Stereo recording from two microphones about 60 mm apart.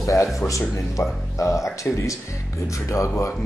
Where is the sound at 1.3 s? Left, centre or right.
Left.